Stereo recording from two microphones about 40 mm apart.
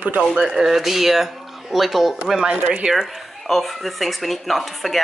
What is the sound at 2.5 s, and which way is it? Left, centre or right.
Speech, right.